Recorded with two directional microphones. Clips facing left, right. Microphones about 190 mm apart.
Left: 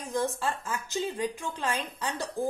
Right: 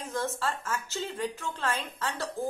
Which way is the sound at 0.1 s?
15° left (ahead or behind).